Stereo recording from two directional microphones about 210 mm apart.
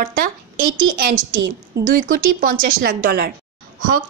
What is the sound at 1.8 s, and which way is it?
A woman's voice, 40° right (ahead or behind).